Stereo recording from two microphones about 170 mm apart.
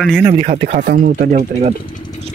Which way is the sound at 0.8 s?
55° right (ahead or behind).